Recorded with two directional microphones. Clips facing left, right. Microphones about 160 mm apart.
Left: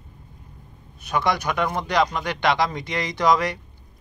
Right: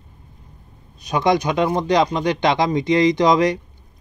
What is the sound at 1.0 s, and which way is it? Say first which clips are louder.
Speech: right 5 dB; 20° right (ahead or behind).